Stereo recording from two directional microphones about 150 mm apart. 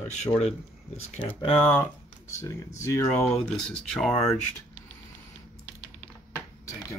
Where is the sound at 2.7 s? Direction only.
20° left (ahead or behind).